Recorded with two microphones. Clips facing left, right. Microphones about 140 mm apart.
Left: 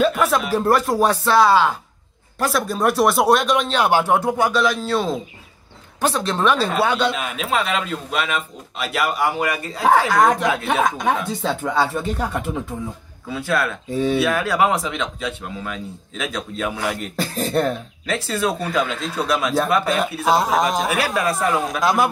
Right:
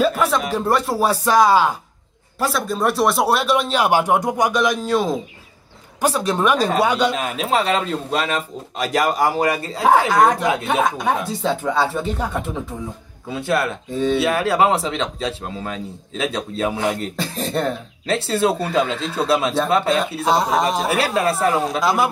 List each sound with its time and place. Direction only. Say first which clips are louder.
0.5 s speech: left 2 dB; centre (ahead or behind); by 1.8 s 15° right (ahead or behind)
2.3 s speech: even; centre (ahead or behind)
7.1 s speech: right 2 dB; 35° right (ahead or behind)
10.4 s speech: right 1 dB; 20° right (ahead or behind)
10.7 s speech: left 1 dB; centre (ahead or behind)
13.3 s speech: right 1 dB; 25° right (ahead or behind)
13.8 s speech: even; 5° left (ahead or behind)
14.1 s speech: right 3 dB; 25° right (ahead or behind)
17.2 s speech: left 4 dB; centre (ahead or behind)
18.0 s speech: right 4 dB; 30° right (ahead or behind)
20.2 s speech: left 1 dB; centre (ahead or behind)
20.9 s speech: right 2 dB; 30° right (ahead or behind)
21.8 s speech: left 2 dB; centre (ahead or behind)